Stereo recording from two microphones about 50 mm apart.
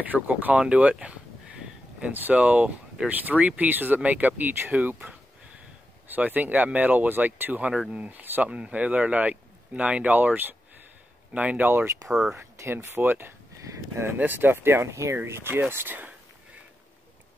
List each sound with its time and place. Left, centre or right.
0.0 s speech: right
1.6 s a sound: right
2.3 s speech: right
6.0 s speech: right
8.5 s speech: right
12.1 s speech: centre
12.4 s speech: right
13.6 s a sound: right
14.1 s speech: right
15.1 s speech: right